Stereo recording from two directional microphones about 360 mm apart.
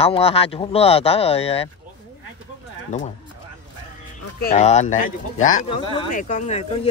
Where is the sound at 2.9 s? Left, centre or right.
Centre.